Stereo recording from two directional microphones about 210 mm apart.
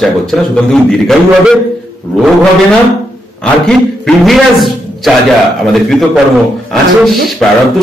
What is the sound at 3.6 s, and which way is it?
A man's voice, centre (ahead or behind).